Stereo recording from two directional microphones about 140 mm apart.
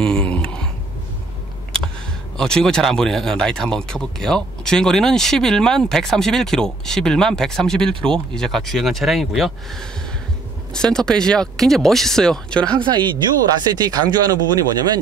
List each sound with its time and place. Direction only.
0.0 s a sound: 5° left (ahead or behind)
2.3 s speech: 5° left (ahead or behind)
10.7 s speech: 5° left (ahead or behind)
12.7 s speech: 35° right (ahead or behind)